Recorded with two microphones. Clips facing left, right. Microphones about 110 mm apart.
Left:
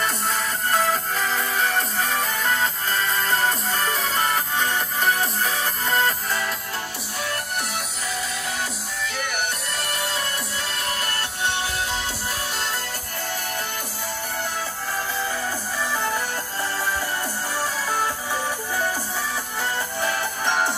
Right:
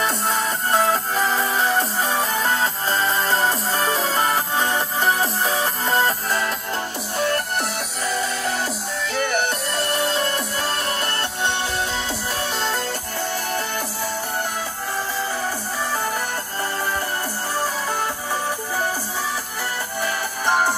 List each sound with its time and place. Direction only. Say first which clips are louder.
0.7 s music: right 3 dB; 30° right (ahead or behind)
8.1 s music: right 6 dB; 40° right (ahead or behind)